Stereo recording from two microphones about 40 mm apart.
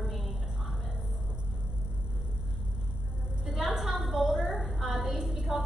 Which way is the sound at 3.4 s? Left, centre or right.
Centre.